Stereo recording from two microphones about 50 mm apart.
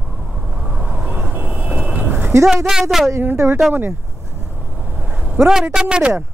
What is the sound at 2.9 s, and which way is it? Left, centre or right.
Speech, centre.